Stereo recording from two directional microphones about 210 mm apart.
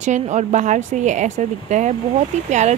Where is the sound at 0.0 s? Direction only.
35° right (ahead or behind).